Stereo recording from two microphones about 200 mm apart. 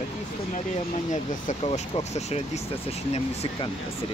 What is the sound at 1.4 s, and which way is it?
Speech, 35° left (ahead or behind).